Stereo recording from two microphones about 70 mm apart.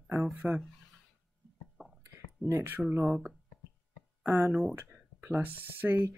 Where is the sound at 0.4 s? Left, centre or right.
Centre.